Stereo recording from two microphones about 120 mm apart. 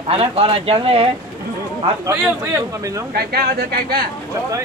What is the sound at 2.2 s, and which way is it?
Speech, 25° right (ahead or behind).